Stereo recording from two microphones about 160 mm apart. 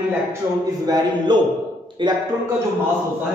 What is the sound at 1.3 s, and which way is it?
Speech, 30° right (ahead or behind).